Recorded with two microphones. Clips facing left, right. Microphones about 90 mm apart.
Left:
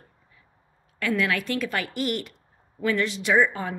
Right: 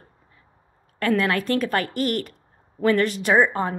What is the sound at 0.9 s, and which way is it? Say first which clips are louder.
Speech: right 4 dB; 40° right (ahead or behind).